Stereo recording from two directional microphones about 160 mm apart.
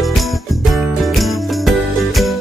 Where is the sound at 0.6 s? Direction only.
Centre (ahead or behind).